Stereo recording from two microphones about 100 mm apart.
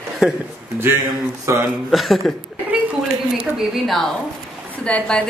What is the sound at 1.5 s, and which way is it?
Speech, 30° right (ahead or behind).